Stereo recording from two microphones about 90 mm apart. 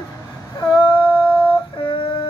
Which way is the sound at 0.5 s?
60° left (ahead or behind).